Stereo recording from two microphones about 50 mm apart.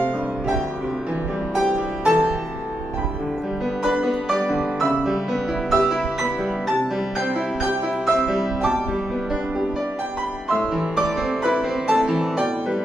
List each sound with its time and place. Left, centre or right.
1.5 s music: centre
3.8 s music: centre
7.6 s music: centre
10.5 s music: centre